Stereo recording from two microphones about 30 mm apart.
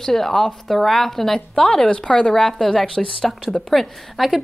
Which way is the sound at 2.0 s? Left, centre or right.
Left.